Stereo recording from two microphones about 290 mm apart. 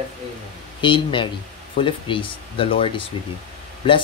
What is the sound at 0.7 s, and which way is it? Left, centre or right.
Speech, centre.